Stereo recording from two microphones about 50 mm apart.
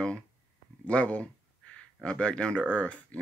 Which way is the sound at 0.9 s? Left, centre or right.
Left.